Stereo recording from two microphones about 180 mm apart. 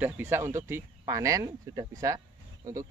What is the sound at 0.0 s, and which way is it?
Speech, 10° right (ahead or behind).